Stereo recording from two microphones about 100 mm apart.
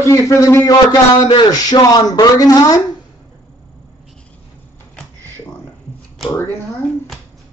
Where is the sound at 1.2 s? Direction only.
45° left (ahead or behind).